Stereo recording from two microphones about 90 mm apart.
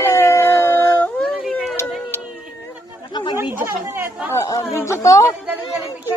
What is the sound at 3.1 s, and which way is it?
Chatter, 50° left (ahead or behind).